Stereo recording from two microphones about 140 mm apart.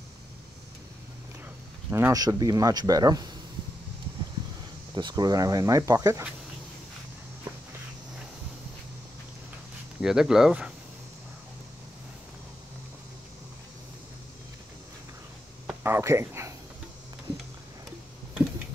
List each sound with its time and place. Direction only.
1.9 s speech: 20° right (ahead or behind)
4.9 s speech: 35° right (ahead or behind)
10.0 s speech: 5° right (ahead or behind)
15.8 s speech: 20° right (ahead or behind)